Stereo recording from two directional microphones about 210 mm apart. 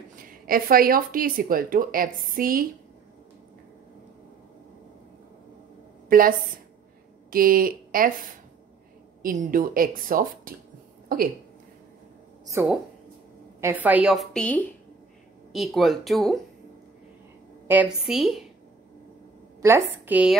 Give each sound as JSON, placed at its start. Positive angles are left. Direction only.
{"t": 0.1, "sound": "speech", "side_deg": -45}
{"t": 6.0, "sound": "a woman's voice", "side_deg": -40}
{"t": 12.4, "sound": "a woman's voice", "side_deg": -10}
{"t": 17.6, "sound": "a woman's voice", "side_deg": -5}
{"t": 19.6, "sound": "a woman's voice", "side_deg": -10}